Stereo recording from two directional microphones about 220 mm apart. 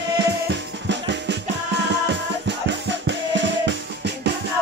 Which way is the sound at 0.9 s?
55° right (ahead or behind).